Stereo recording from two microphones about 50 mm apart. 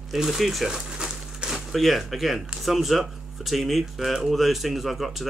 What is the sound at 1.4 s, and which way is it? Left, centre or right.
Speech, centre.